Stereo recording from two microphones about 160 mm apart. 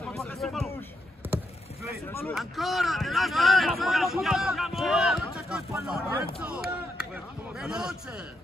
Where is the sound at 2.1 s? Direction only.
15° left (ahead or behind).